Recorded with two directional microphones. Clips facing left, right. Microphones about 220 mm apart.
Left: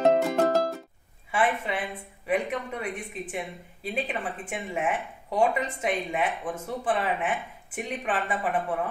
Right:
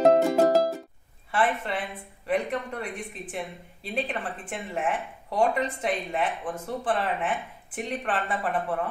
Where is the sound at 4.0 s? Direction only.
5° left (ahead or behind).